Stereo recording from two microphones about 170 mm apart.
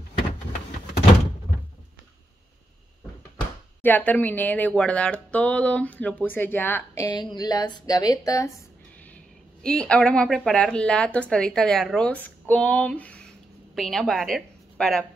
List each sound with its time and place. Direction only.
3.8 s speech: 10° left (ahead or behind)
7.1 s a woman's voice: 25° left (ahead or behind)
9.1 s a woman's voice: 5° left (ahead or behind)